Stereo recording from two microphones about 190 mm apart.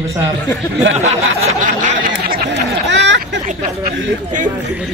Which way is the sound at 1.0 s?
35° right (ahead or behind).